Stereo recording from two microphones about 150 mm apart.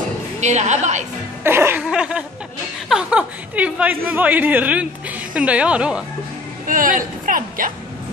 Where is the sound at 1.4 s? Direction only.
15° right (ahead or behind).